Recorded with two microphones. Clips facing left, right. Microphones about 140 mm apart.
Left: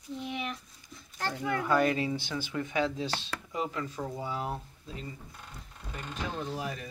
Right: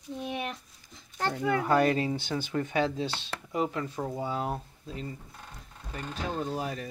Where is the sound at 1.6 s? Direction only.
35° right (ahead or behind).